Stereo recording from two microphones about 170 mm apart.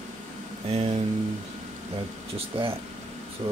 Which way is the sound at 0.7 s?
35° right (ahead or behind).